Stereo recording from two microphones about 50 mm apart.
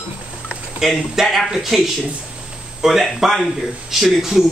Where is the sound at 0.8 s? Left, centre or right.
Centre.